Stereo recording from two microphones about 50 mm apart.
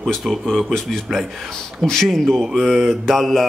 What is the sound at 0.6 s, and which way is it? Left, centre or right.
Speech, centre.